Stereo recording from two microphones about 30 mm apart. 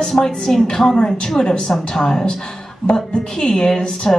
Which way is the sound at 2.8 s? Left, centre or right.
Left.